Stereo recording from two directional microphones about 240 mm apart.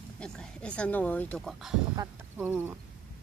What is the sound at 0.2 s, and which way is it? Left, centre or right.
A woman's voice, centre.